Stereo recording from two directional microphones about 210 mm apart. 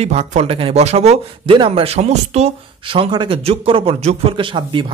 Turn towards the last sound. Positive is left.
turn(degrees=-25)  # may be behind; listen again after turning